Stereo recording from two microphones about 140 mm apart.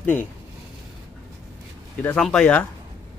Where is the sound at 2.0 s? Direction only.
5° left (ahead or behind).